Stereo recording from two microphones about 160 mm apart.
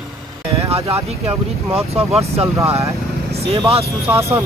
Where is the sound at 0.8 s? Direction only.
15° right (ahead or behind).